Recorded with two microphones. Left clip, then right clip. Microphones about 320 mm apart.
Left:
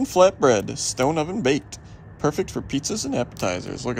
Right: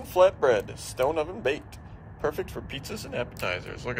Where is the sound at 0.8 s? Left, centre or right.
Left.